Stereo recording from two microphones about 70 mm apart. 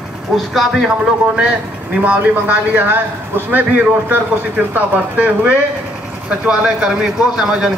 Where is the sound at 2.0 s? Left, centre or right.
Right.